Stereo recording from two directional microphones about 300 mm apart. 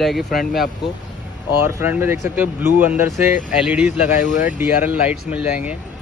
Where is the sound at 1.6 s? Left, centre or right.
Centre.